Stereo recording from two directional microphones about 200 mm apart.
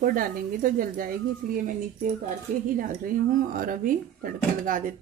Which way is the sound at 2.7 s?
40° right (ahead or behind).